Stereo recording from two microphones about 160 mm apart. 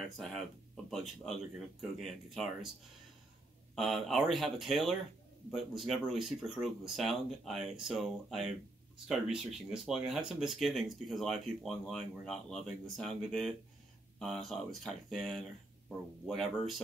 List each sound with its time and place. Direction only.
0.8 s speech: centre (ahead or behind)
3.7 s speech: centre (ahead or behind)